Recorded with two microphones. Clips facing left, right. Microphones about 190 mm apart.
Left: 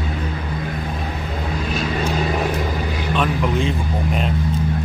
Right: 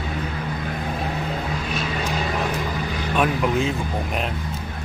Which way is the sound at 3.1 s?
5° right (ahead or behind).